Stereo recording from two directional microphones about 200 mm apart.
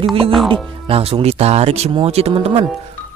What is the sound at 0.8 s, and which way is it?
Speech, 30° right (ahead or behind).